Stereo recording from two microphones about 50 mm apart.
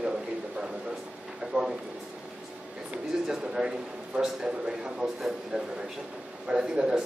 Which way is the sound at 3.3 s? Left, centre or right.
Centre.